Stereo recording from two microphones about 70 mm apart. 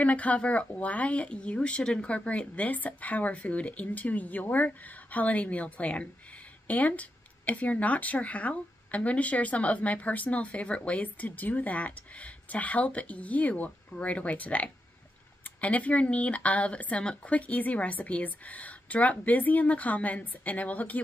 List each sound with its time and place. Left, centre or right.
0.0 s speech: left